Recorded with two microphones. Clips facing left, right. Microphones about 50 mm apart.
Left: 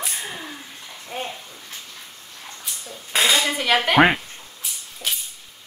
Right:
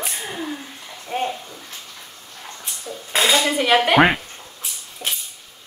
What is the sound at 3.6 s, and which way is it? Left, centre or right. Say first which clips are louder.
Speech: right 3 dB; centre.